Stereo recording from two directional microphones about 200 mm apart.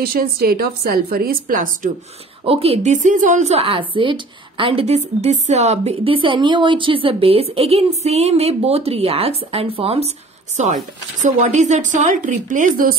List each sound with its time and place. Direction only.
0.0 s a woman's voice: 50° right (ahead or behind)
2.4 s speech: 30° right (ahead or behind)